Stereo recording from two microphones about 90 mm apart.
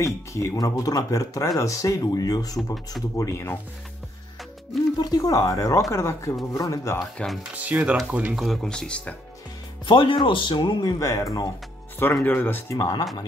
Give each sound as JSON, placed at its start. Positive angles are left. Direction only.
{"t": 0.0, "sound": "speech", "side_deg": 35}
{"t": 2.5, "sound": "speech", "side_deg": 0}
{"t": 3.2, "sound": "speech", "side_deg": 35}
{"t": 4.9, "sound": "speech", "side_deg": 45}
{"t": 7.0, "sound": "speech", "side_deg": 5}
{"t": 7.5, "sound": "speech", "side_deg": -15}
{"t": 8.4, "sound": "speech", "side_deg": 0}
{"t": 9.8, "sound": "speech", "side_deg": 70}
{"t": 10.8, "sound": "speech", "side_deg": 40}
{"t": 12.3, "sound": "speech", "side_deg": 20}